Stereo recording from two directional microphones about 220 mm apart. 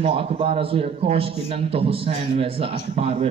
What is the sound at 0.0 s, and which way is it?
A man's voice, 25° right (ahead or behind).